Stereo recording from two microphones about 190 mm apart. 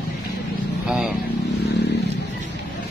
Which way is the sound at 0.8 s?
5° right (ahead or behind).